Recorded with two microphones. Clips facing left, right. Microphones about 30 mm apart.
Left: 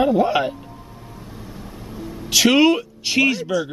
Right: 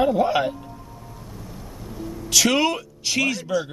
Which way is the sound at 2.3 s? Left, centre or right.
Centre.